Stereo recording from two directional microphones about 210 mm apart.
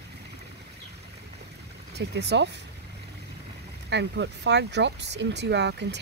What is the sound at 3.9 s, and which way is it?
Speech, 55° right (ahead or behind).